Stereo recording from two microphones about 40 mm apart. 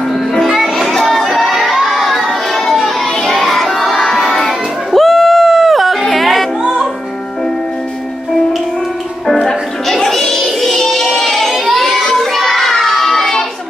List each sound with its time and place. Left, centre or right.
0.1 s music: centre
0.5 s a sound: centre
2.8 s child singing: centre
6.6 s music: right
9.2 s music: centre
12.1 s child singing: centre